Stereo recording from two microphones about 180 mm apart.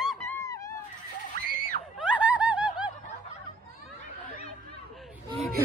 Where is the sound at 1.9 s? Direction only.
10° right (ahead or behind).